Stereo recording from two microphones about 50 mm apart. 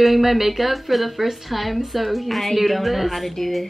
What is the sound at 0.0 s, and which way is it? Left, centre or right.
Speech, centre.